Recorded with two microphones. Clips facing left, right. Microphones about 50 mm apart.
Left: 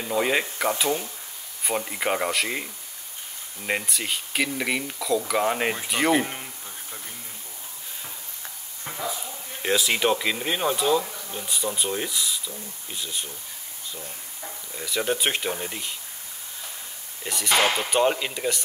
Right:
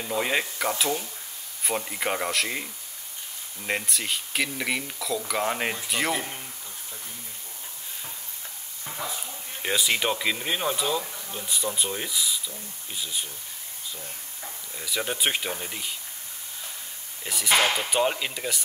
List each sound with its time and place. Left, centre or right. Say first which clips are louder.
0.0 s speech: left 3 dB; centre
6.1 s speech: left 8 dB; left
9.6 s speech: left 3 dB; centre
14.8 s speech: left 3 dB; centre
17.2 s speech: left 2 dB; centre
17.6 s speech: left 2 dB; centre
17.8 s speech: left 3 dB; centre